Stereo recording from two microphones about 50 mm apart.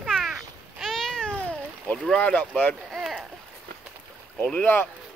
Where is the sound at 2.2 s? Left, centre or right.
Left.